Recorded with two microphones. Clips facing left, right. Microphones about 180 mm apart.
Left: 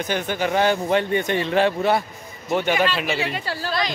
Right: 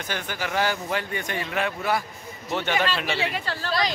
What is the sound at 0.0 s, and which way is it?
Speech, 20° left (ahead or behind).